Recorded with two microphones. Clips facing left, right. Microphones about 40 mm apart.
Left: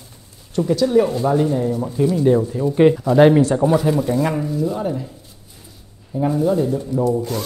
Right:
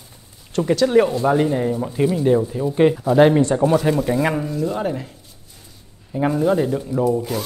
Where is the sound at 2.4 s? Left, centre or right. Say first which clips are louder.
Left 1 dB; centre.